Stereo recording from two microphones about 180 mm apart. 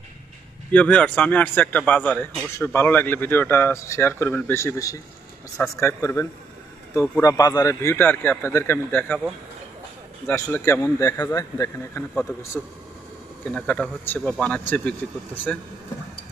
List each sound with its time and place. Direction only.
0.7 s speech: 5° left (ahead or behind)
10.2 s speech: 15° left (ahead or behind)
12.6 s speech: 5° left (ahead or behind)